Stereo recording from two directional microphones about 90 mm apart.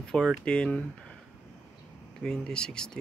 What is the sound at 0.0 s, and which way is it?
Speech, 10° left (ahead or behind).